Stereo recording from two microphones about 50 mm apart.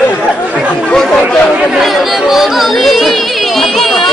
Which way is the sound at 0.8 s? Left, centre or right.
Centre.